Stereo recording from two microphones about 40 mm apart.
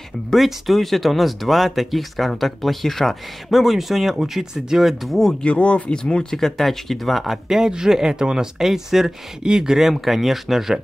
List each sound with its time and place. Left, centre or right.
0.3 s speech: centre
5.4 s speech: left
5.9 s speech: left
6.3 s speech: centre
7.4 s speech: centre